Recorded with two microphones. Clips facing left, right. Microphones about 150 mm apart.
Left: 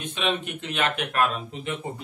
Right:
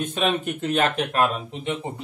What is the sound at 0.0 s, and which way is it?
Speech, 45° right (ahead or behind).